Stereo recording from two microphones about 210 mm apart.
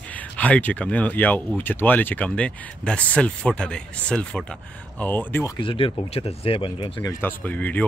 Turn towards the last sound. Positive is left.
turn(degrees=5)  # may be behind; listen again after turning